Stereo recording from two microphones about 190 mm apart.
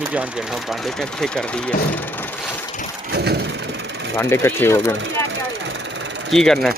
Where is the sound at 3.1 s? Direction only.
60° right (ahead or behind).